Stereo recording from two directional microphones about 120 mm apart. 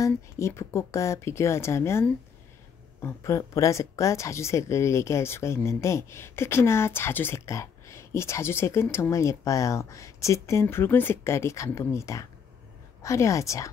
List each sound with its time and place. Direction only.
0.0 s speech: 25° left (ahead or behind)